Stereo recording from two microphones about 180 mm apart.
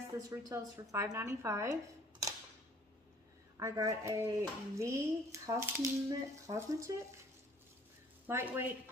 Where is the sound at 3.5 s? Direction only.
20° right (ahead or behind).